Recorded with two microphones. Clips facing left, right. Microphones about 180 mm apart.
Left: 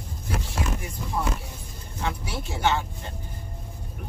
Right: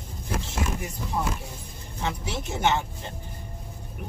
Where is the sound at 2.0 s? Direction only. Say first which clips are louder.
Even; 20° right (ahead or behind).